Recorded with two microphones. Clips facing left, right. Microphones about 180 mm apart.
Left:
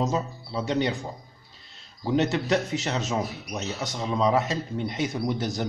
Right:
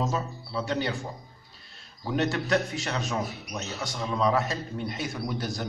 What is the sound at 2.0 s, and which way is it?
Speech, 20° left (ahead or behind).